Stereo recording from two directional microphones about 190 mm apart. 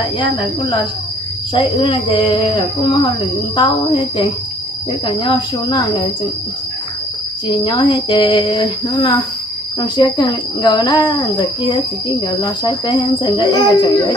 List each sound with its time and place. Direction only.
0.0 s speech: 25° left (ahead or behind)
7.4 s speech: 25° left (ahead or behind)